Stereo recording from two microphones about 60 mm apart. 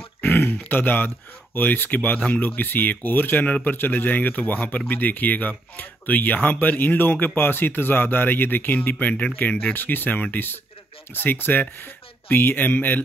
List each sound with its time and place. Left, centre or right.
0.2 s speech: left